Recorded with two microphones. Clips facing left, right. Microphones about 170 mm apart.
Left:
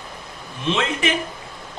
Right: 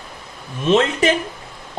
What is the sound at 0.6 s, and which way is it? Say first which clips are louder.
Speech: right 7 dB; 45° right (ahead or behind).